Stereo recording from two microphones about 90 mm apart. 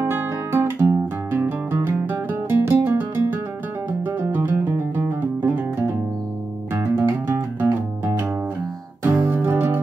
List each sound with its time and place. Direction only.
0.0 s music: 25° right (ahead or behind)
9.3 s music: 25° right (ahead or behind)